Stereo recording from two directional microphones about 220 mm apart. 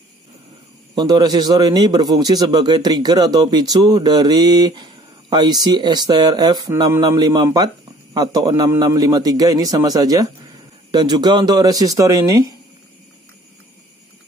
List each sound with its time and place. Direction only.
0.9 s a man's voice: 20° right (ahead or behind)